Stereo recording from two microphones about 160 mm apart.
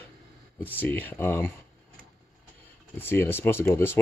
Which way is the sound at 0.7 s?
10° left (ahead or behind).